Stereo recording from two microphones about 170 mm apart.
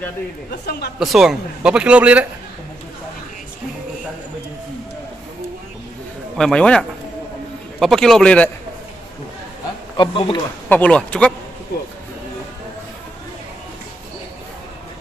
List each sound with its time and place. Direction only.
0.5 s a woman's voice: 65° left (ahead or behind)
0.9 s speech: centre (ahead or behind)
6.3 s speech: 5° left (ahead or behind)
9.9 s speech: 30° left (ahead or behind)
10.7 s speech: 10° left (ahead or behind)